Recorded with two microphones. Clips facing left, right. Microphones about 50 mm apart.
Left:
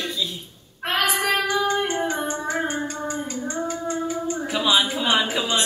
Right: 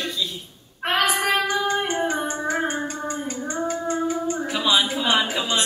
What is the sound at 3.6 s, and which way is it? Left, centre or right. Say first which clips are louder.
Female singing: right 4 dB; centre.